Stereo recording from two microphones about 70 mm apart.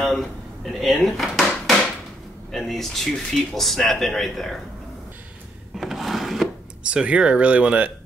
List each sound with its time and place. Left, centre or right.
0.0 s a man's voice: centre
5.8 s wood: centre
6.8 s speech: centre